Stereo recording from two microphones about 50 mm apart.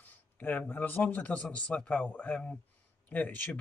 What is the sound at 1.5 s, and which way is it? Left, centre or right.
Speech, left.